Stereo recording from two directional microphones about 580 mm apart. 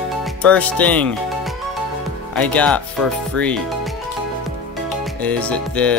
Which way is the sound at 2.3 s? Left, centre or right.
Centre.